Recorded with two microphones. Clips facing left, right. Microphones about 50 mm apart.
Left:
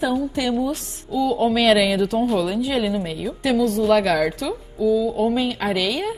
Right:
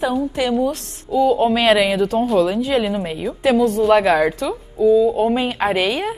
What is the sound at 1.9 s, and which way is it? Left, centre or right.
A woman's voice, centre.